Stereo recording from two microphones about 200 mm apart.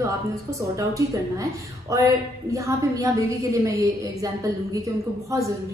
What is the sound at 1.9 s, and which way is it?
A woman's voice, 15° right (ahead or behind).